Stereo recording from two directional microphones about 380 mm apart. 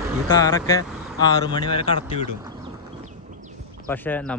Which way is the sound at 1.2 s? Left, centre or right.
Centre.